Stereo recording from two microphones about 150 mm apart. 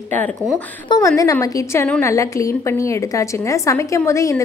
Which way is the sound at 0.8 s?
25° left (ahead or behind).